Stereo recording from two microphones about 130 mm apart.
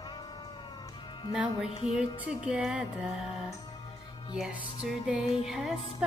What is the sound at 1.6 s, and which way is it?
Music, 50° left (ahead or behind).